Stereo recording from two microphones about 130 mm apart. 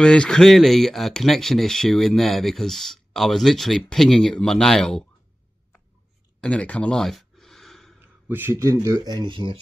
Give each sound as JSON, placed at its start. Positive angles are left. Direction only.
{"t": 0.0, "sound": "speech", "side_deg": 5}
{"t": 6.4, "sound": "a sound", "side_deg": 10}
{"t": 8.3, "sound": "speech", "side_deg": -15}